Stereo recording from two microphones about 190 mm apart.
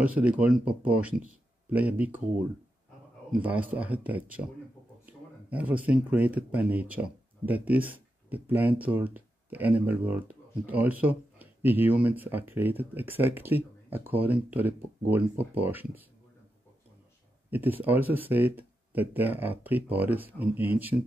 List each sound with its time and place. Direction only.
0.0 s speech: 10° right (ahead or behind)
3.4 s speech: 10° right (ahead or behind)
17.5 s speech: 10° right (ahead or behind)